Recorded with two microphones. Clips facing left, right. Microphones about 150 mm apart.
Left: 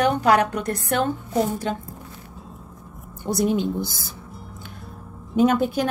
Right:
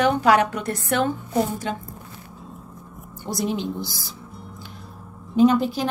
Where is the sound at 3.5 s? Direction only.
50° left (ahead or behind).